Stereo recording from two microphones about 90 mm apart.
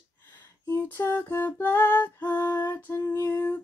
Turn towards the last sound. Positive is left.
turn(degrees=30)  # may be behind; listen again after turning